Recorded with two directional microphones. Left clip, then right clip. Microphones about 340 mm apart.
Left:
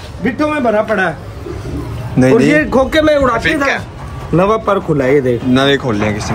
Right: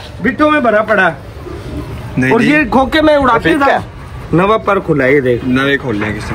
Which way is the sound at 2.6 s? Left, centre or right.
Centre.